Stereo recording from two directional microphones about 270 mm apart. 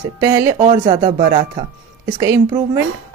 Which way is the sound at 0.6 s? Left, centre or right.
Right.